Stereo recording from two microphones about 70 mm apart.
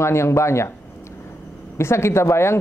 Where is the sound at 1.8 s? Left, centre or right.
Left.